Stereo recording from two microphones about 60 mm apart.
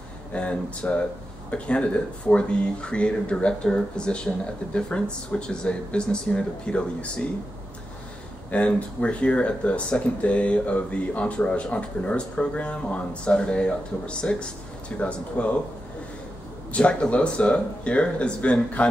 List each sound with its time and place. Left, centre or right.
0.3 s speech: left
8.5 s speech: left
16.7 s speech: left